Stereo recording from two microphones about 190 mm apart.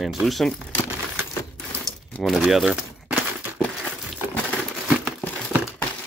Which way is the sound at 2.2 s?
Centre (ahead or behind).